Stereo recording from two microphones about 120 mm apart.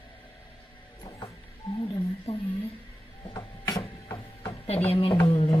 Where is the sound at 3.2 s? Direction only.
35° left (ahead or behind).